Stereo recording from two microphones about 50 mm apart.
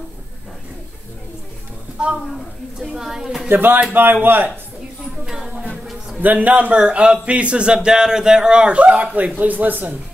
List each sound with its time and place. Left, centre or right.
2.0 s a woman's voice: centre
2.3 s a woman's voice: centre
3.4 s a man's voice: right
5.2 s a sound: centre
6.2 s speech: right